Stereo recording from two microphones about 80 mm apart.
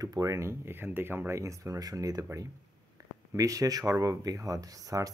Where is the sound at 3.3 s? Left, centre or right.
Right.